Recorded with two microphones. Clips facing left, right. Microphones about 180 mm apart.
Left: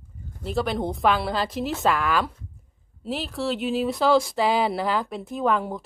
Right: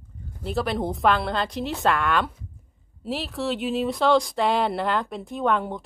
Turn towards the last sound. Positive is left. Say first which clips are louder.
# even
turn(degrees=0)  # may be behind; listen again after turning